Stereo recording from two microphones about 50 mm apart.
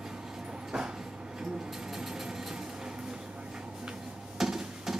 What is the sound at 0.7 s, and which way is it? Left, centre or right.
Train, centre.